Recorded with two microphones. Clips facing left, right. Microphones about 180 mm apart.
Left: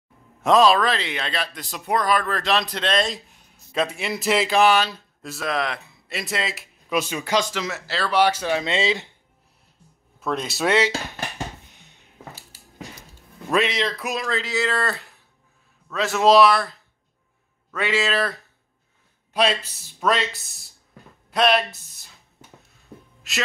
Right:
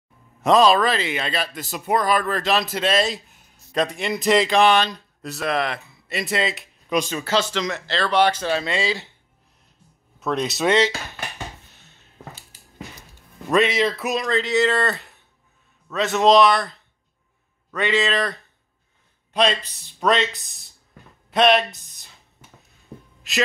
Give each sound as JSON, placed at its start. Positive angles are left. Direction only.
{"t": 0.4, "sound": "a man's voice", "side_deg": 0}
{"t": 10.2, "sound": "a man's voice", "side_deg": 0}
{"t": 11.6, "sound": "a sound", "side_deg": 15}
{"t": 13.5, "sound": "a man's voice", "side_deg": 0}
{"t": 17.7, "sound": "a man's voice", "side_deg": 5}
{"t": 21.3, "sound": "speech", "side_deg": 0}
{"t": 23.3, "sound": "a man's voice", "side_deg": 0}